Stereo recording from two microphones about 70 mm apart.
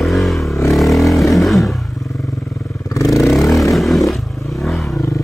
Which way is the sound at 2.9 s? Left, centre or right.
Left.